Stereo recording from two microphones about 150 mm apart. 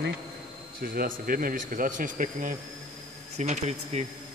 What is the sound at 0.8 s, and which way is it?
Speech, 75° right (ahead or behind).